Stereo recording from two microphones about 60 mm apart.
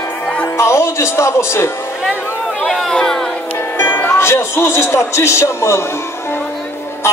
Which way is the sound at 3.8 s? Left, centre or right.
Left.